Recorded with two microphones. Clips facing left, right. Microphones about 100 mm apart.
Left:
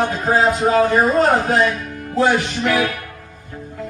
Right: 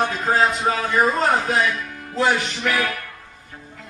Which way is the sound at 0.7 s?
35° left (ahead or behind).